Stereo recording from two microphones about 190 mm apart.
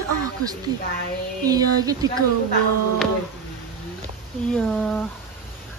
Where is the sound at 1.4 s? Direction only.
20° right (ahead or behind).